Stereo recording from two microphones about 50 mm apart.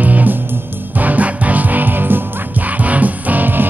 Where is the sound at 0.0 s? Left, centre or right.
Right.